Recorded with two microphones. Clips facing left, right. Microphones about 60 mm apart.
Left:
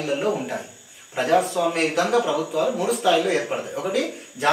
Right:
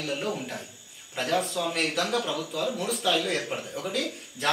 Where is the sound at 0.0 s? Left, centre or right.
Centre.